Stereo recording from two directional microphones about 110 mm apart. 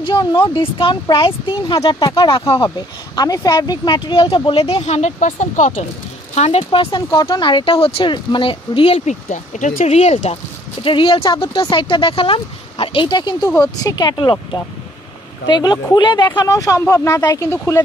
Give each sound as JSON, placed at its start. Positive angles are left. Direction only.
{"t": 0.0, "sound": "speech", "side_deg": 45}
{"t": 3.2, "sound": "speech", "side_deg": 40}
{"t": 6.9, "sound": "speech", "side_deg": 40}
{"t": 14.1, "sound": "speech", "side_deg": 45}